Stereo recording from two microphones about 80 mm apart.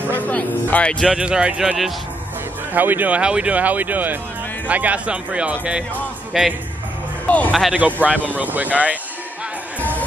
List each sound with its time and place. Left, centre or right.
0.2 s a sound: left
1.0 s a man's voice: centre
6.3 s speech: centre
7.2 s speech: centre
7.7 s a man's voice: centre
9.8 s music: centre